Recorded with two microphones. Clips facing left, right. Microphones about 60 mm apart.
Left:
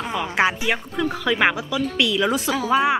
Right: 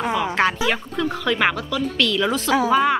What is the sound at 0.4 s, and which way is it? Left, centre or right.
Speech, centre.